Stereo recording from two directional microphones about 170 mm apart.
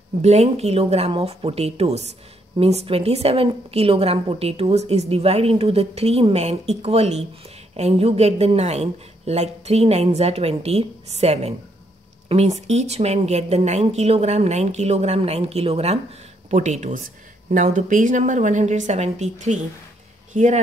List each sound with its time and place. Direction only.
0.2 s a woman's voice: 40° right (ahead or behind)